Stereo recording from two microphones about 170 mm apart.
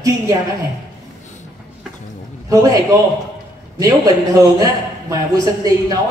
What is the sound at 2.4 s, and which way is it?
A man's voice, 20° right (ahead or behind).